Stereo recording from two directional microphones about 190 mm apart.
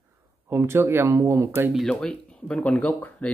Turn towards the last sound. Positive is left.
turn(degrees=10)  # may be behind; listen again after turning